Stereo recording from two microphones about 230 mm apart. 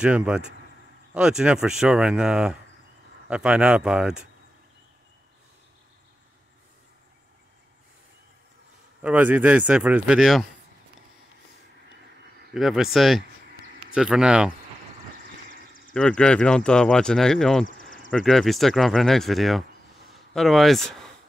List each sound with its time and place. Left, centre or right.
0.0 s speech: centre
9.0 s speech: centre
12.5 s speech: centre
15.9 s speech: centre
17.6 s a sound: left
18.1 s speech: centre